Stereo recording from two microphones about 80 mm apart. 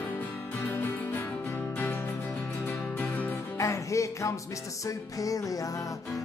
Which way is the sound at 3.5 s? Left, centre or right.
Left.